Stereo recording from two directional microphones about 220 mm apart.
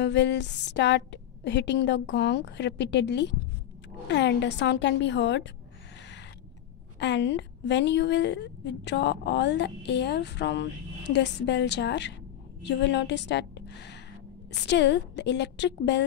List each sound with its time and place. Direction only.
0.0 s a woman's voice: 50° left (ahead or behind)
7.0 s a woman's voice: 55° left (ahead or behind)